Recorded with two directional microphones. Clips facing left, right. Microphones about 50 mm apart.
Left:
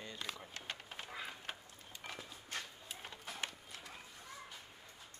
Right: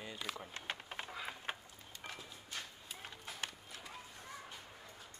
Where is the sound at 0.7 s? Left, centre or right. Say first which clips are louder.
Right 3 dB; right.